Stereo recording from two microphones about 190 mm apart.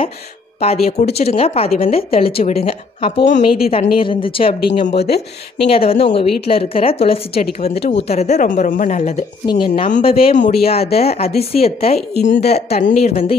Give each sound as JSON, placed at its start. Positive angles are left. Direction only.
{"t": 0.6, "sound": "speech", "side_deg": 35}
{"t": 3.3, "sound": "a woman's voice", "side_deg": 45}
{"t": 3.7, "sound": "a woman's voice", "side_deg": 30}
{"t": 9.5, "sound": "a woman's voice", "side_deg": 25}